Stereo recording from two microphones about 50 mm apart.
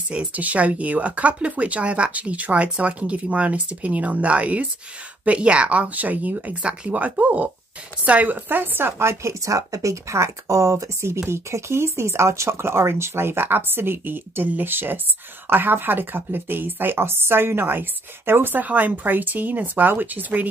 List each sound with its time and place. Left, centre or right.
0.1 s speech: right